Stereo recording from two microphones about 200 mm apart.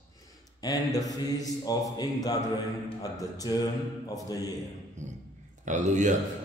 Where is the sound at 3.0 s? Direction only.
20° left (ahead or behind).